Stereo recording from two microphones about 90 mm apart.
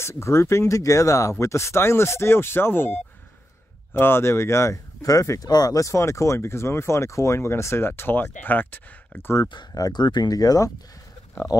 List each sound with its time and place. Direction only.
0.0 s speech: 30° left (ahead or behind)
9.5 s speech: 50° left (ahead or behind)